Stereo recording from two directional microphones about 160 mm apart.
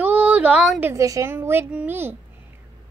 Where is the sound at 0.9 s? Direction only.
20° right (ahead or behind).